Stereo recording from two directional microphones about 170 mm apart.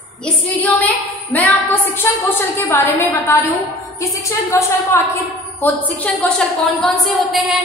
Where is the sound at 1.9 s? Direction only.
10° left (ahead or behind).